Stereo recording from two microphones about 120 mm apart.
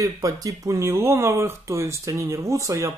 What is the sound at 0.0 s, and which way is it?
Speech, 30° right (ahead or behind).